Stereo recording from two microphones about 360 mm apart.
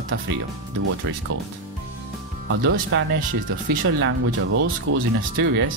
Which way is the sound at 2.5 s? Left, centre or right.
Right.